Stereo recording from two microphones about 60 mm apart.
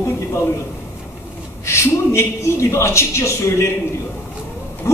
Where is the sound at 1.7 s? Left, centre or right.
Left.